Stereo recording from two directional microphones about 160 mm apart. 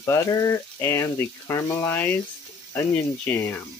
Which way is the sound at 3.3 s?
10° left (ahead or behind).